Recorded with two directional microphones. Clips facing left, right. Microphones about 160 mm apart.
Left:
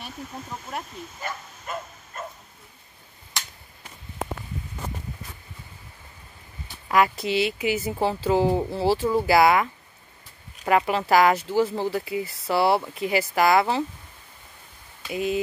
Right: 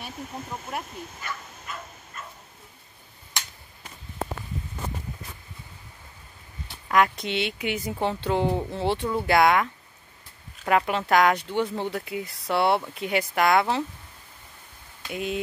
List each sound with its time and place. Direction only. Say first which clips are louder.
1.2 s bow-wow: left 7 dB; 50° left (ahead or behind)
6.9 s speech: left 1 dB; 5° left (ahead or behind)
15.0 s speech: left 4 dB; centre (ahead or behind)